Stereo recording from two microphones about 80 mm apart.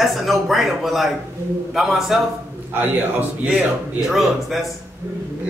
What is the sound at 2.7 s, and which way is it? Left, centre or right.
Speech, right.